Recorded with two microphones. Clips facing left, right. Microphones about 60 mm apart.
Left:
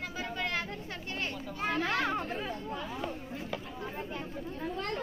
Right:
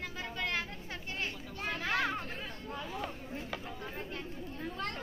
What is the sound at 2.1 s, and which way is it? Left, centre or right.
Chatter, centre.